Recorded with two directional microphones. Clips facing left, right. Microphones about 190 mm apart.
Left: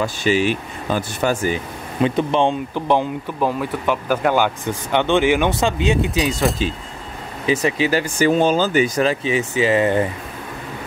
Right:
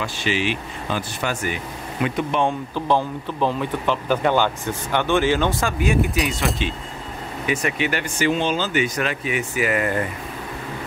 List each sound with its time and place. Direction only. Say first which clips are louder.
0.0 s speech: left 6 dB; 45° left (ahead or behind)
2.7 s speech: left 2 dB; 15° left (ahead or behind)
6.6 s speech: left 3 dB; 35° left (ahead or behind)